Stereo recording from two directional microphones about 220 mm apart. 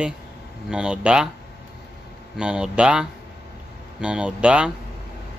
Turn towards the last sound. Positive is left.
turn(degrees=-5)  # may be behind; listen again after turning